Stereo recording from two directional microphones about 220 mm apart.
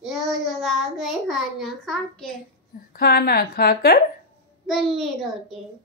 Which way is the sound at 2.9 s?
45° left (ahead or behind).